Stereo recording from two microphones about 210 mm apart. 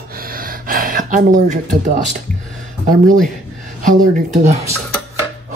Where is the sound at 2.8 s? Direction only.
40° right (ahead or behind).